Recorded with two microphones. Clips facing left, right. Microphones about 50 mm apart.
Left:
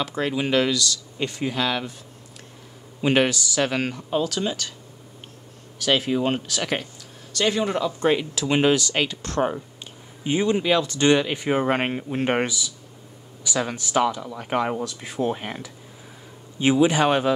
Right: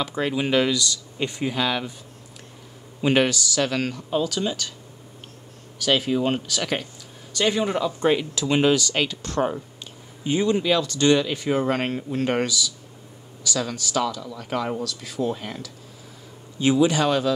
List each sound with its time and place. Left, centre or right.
0.0 s speech: centre
3.0 s speech: centre
5.8 s speech: centre
7.0 s speech: centre
8.2 s speech: centre
9.4 s speech: centre
16.5 s speech: centre